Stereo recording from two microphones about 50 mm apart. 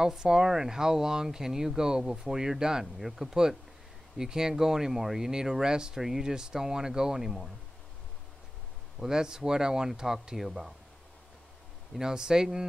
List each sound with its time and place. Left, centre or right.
0.0 s speech: centre
9.0 s speech: centre
12.0 s speech: centre